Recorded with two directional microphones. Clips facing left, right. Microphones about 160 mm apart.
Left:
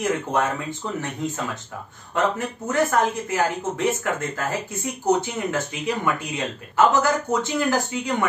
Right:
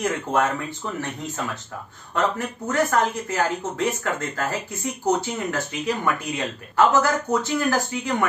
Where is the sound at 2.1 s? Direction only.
20° left (ahead or behind).